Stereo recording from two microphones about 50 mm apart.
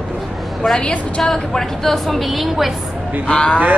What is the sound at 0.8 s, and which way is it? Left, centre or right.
A man's voice, centre.